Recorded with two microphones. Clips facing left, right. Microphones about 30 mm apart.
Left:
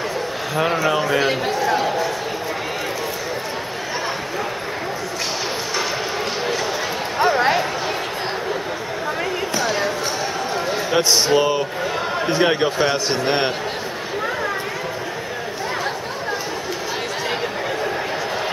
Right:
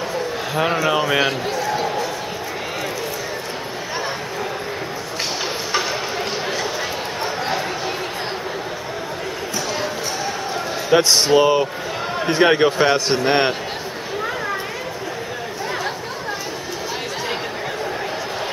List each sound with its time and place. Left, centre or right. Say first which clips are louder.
0.6 s a man's voice: even; centre
1.0 s a man's voice: even; centre
10.9 s a man's voice: right 3 dB; centre